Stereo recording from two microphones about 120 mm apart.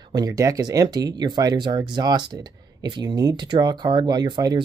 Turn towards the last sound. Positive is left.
turn(degrees=-35)  # may be behind; listen again after turning